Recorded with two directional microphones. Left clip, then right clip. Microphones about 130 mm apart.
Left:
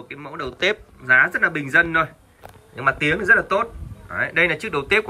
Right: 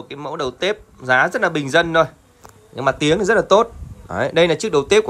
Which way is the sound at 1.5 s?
40° right (ahead or behind).